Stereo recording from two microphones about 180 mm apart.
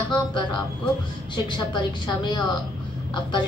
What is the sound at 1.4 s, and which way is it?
A woman's voice, 25° left (ahead or behind).